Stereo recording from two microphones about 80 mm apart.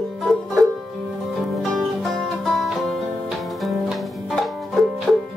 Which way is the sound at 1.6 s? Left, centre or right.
Centre.